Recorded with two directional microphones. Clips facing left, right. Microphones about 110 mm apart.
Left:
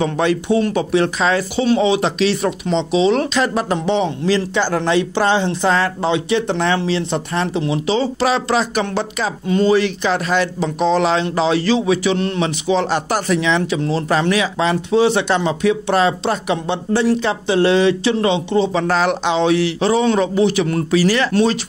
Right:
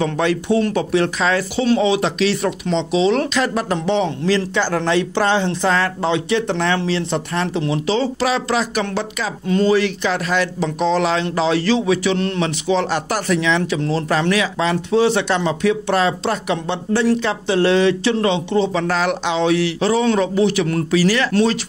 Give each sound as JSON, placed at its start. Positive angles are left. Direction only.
{"t": 0.0, "sound": "speech", "side_deg": 20}
{"t": 8.3, "sound": "speech", "side_deg": 25}
{"t": 18.8, "sound": "speech", "side_deg": 25}